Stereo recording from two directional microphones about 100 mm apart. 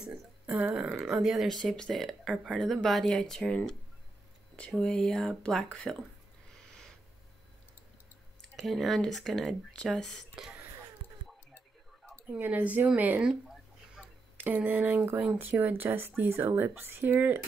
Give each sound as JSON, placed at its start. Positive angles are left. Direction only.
{"t": 0.0, "sound": "a sound", "side_deg": -10}
{"t": 0.7, "sound": "speech", "side_deg": -5}
{"t": 8.4, "sound": "speech", "side_deg": 0}
{"t": 10.3, "sound": "speech", "side_deg": -5}
{"t": 12.3, "sound": "a woman's voice", "side_deg": -20}
{"t": 14.3, "sound": "speech", "side_deg": -20}